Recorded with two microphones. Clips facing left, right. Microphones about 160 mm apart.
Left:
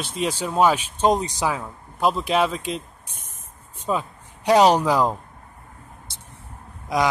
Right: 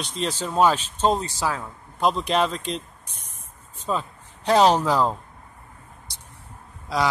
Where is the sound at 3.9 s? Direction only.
10° left (ahead or behind).